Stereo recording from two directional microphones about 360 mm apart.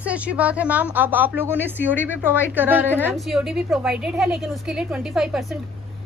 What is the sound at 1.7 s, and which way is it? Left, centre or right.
Speech, left.